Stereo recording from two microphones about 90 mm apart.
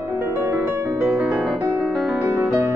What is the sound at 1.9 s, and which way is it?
Music, centre (ahead or behind).